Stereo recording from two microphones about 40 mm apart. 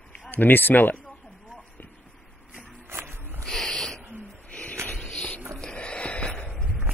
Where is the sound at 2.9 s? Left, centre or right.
Right.